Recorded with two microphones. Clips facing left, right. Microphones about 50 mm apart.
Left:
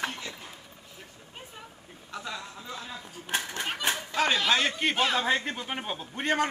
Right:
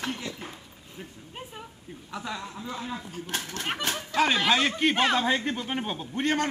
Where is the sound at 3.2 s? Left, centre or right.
Centre.